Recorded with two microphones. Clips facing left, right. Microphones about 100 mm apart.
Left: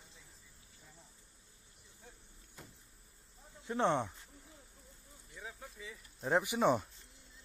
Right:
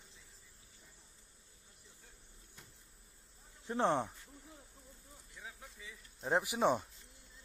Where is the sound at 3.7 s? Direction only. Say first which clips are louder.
Left 1 dB; 30° right (ahead or behind).